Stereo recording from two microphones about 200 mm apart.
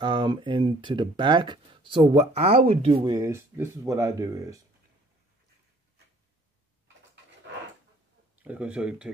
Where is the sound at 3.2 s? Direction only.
15° right (ahead or behind).